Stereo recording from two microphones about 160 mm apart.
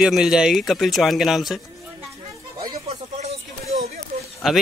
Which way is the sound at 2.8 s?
40° right (ahead or behind).